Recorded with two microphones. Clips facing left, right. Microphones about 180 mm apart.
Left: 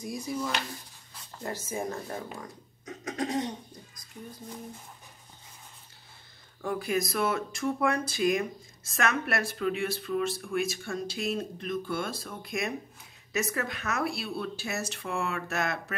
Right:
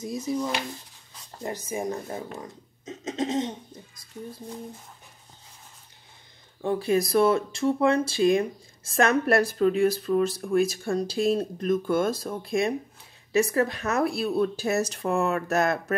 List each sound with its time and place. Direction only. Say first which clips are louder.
0.0 s speech: right 5 dB; 25° right (ahead or behind)
6.6 s a woman's voice: right 6 dB; 30° right (ahead or behind)